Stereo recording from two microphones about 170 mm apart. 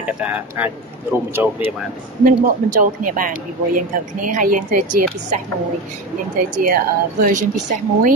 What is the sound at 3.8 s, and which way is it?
A woman's voice, 50° right (ahead or behind).